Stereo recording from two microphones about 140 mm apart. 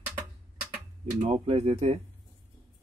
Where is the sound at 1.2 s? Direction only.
50° right (ahead or behind).